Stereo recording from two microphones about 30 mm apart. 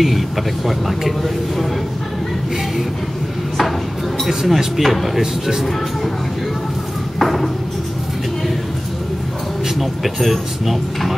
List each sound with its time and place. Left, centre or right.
0.0 s speech: centre
4.3 s speech: centre
5.2 s speech: centre
7.2 s a sound: centre
9.8 s speech: centre